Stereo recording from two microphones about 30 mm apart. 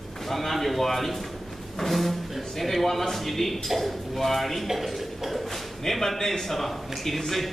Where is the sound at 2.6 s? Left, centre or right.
Centre.